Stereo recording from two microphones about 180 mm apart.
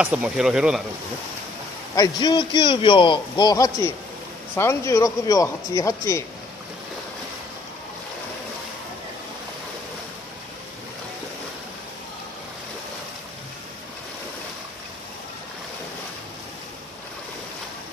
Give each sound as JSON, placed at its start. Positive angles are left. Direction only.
{"t": 0.0, "sound": "speech", "side_deg": -5}
{"t": 2.0, "sound": "a man's voice", "side_deg": 25}